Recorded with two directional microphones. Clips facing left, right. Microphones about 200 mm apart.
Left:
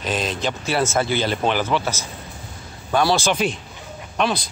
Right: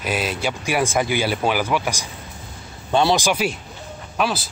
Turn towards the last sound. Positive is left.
turn(degrees=-5)  # may be behind; listen again after turning